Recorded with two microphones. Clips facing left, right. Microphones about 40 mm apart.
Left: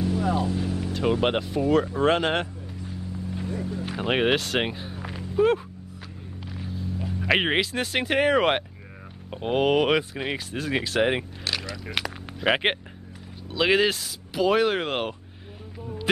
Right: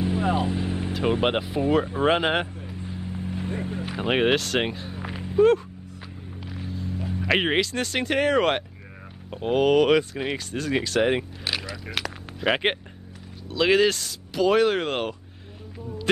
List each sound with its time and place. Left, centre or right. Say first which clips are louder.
0.0 s vehicle: right 1 dB; right
1.2 s speech: even; centre
2.4 s vehicle: right 1 dB; right
3.8 s speech: right 1 dB; centre
4.9 s run: right 2 dB; centre
6.4 s speech: right 1 dB; centre
11.4 s a sound: right 1 dB; centre
11.9 s speech: left 1 dB; centre